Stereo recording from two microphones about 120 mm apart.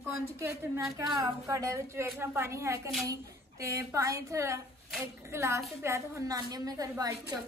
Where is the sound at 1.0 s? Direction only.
30° right (ahead or behind).